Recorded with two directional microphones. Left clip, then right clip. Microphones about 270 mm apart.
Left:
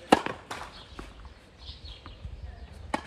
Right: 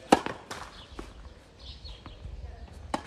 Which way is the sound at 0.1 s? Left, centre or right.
Centre.